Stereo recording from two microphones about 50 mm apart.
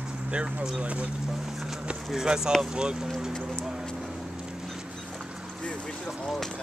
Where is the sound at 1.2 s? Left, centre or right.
Centre.